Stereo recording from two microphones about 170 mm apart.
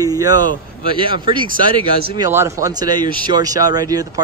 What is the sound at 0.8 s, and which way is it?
Speech, 30° right (ahead or behind).